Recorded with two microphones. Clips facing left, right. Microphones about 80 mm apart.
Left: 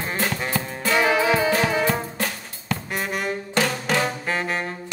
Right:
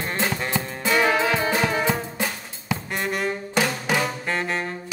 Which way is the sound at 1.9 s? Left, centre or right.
Centre.